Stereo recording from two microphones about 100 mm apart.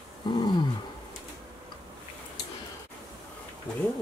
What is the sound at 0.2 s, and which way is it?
Wild animals, 45° left (ahead or behind).